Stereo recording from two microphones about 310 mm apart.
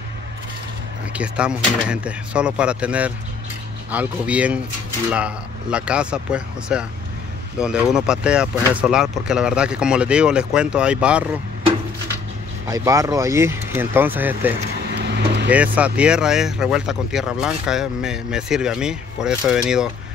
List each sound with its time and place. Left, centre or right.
1.1 s speech: centre
12.6 s speech: centre
15.0 s vehicle: right
15.5 s speech: centre